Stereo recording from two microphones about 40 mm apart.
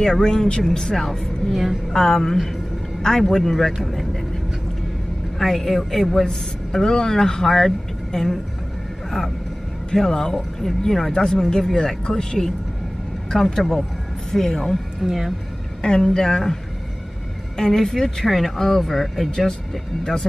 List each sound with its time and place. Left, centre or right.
0.0 s a man's voice: centre
1.5 s speech: centre
2.0 s a man's voice: centre
5.4 s a man's voice: centre
9.9 s a man's voice: centre
15.0 s speech: centre
15.8 s a man's voice: centre
17.6 s a man's voice: centre